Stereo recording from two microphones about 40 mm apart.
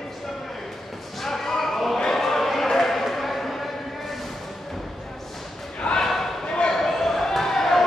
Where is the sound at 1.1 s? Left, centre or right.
Centre.